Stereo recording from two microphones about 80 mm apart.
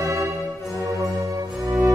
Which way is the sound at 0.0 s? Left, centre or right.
Right.